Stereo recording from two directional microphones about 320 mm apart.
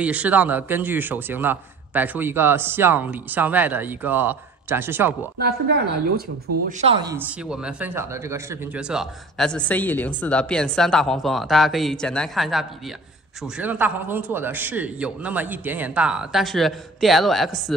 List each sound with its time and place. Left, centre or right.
0.0 s speech: centre
5.4 s a woman's voice: right
6.8 s speech: centre